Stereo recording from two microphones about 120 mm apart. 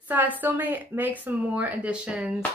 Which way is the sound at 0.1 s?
15° right (ahead or behind).